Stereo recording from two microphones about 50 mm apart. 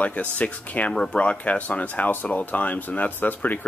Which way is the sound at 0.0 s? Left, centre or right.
Left.